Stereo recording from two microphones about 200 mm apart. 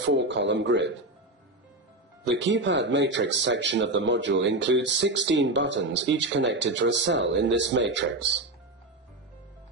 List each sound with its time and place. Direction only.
0.0 s speech: 65° right (ahead or behind)
2.2 s speech: 65° right (ahead or behind)